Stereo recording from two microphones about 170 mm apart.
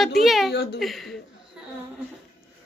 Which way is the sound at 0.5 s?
80° left.